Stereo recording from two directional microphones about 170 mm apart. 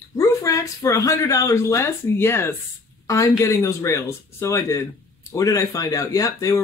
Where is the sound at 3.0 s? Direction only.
20° left (ahead or behind).